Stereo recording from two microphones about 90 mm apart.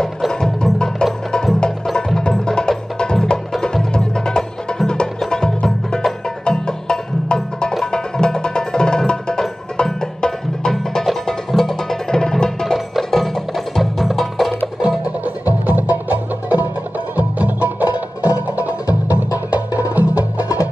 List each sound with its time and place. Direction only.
0.0 s music: 5° left (ahead or behind)
15.2 s music: 20° right (ahead or behind)